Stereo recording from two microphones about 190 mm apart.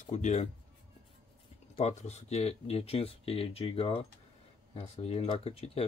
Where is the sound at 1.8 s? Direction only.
35° left (ahead or behind).